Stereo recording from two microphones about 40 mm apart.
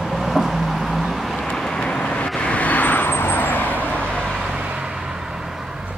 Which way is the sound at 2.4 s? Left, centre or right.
Left.